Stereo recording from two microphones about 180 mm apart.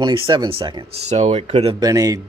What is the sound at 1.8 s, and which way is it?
Speech, 20° right (ahead or behind).